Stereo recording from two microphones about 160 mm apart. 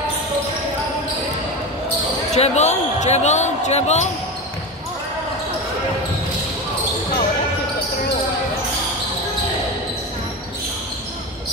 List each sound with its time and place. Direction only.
2.3 s speech: 45° left (ahead or behind)